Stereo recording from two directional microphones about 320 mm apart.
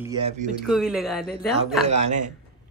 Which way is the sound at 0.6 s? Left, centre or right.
Centre.